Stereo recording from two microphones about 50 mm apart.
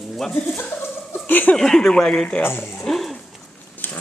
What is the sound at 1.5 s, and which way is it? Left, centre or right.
Speech, centre.